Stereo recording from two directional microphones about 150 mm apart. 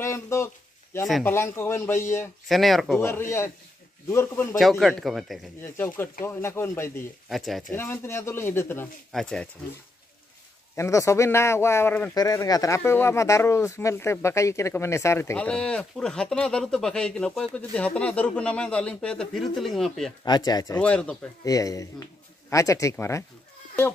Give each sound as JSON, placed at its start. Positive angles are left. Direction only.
{"t": 0.0, "sound": "speech", "side_deg": 20}
{"t": 2.4, "sound": "speech", "side_deg": 0}
{"t": 3.0, "sound": "a man's voice", "side_deg": 15}
{"t": 4.6, "sound": "speech", "side_deg": 0}
{"t": 5.6, "sound": "speech", "side_deg": 15}
{"t": 7.2, "sound": "speech", "side_deg": 0}
{"t": 7.7, "sound": "speech", "side_deg": 15}
{"t": 9.1, "sound": "speech", "side_deg": 5}
{"t": 10.8, "sound": "a man's voice", "side_deg": 20}
{"t": 15.3, "sound": "speech", "side_deg": 5}
{"t": 20.2, "sound": "a man's voice", "side_deg": 25}
{"t": 20.8, "sound": "speech", "side_deg": 5}
{"t": 21.5, "sound": "speech", "side_deg": 25}